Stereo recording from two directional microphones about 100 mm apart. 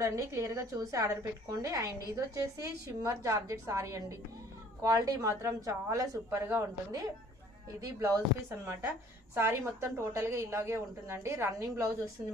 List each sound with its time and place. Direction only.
0.0 s a woman's voice: 30° right (ahead or behind)
9.3 s a woman's voice: 25° right (ahead or behind)